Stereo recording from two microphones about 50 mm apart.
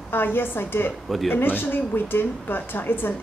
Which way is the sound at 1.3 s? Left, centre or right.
Left.